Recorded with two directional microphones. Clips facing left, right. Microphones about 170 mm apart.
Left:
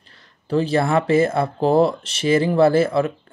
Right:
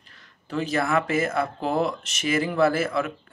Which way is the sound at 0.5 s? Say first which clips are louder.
Left 6 dB; 30° left (ahead or behind).